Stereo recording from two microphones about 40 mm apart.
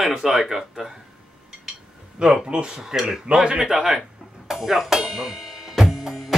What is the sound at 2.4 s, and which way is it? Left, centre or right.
Speech, right.